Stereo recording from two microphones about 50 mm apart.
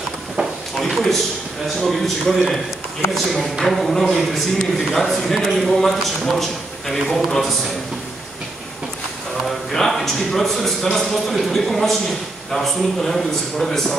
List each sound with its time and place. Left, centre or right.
0.4 s a sound: centre
1.8 s a man's voice: centre
9.7 s a man's voice: centre